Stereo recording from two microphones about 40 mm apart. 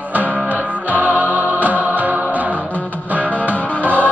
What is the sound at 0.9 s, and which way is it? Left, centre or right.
Music, right.